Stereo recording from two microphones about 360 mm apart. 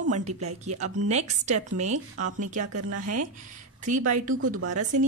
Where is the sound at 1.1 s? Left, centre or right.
Centre.